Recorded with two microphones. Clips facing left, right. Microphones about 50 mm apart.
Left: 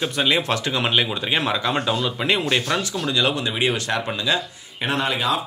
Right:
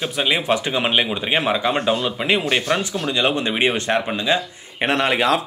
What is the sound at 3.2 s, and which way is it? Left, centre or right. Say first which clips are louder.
Speech: right 3 dB; right.